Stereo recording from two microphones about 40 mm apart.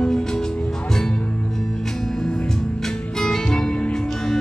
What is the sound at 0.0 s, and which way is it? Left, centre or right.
Music, centre.